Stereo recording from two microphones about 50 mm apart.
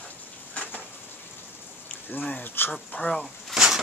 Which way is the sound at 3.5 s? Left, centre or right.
Centre.